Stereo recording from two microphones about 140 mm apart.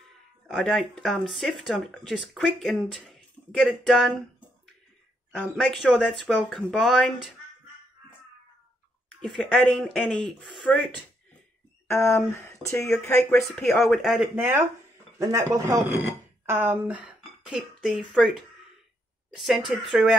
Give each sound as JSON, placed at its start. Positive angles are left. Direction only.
{"t": 0.5, "sound": "speech", "side_deg": 5}
{"t": 5.4, "sound": "speech", "side_deg": 0}
{"t": 9.7, "sound": "speech", "side_deg": 0}
{"t": 11.9, "sound": "speech", "side_deg": 20}
{"t": 13.6, "sound": "speech", "side_deg": 0}
{"t": 14.3, "sound": "speech", "side_deg": -15}
{"t": 19.3, "sound": "speech", "side_deg": 0}